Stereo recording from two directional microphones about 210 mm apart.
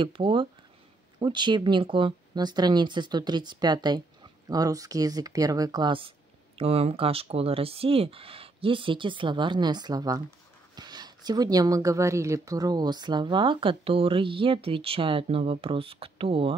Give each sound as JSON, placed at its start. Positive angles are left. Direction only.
{"t": 0.0, "sound": "speech", "side_deg": -25}